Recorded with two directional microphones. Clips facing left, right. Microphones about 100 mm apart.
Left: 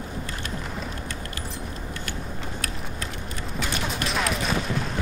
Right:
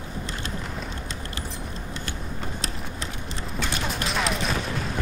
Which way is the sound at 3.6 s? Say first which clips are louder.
Even; centre (ahead or behind).